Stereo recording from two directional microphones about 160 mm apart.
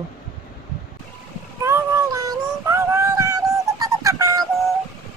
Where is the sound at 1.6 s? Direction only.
15° right (ahead or behind).